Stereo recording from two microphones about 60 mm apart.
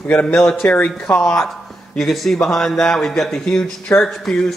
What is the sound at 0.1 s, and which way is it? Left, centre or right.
Speech, centre.